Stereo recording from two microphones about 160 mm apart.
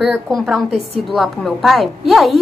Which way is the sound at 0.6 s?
40° right (ahead or behind).